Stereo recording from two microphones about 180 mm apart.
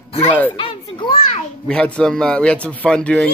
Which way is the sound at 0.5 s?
30° left (ahead or behind).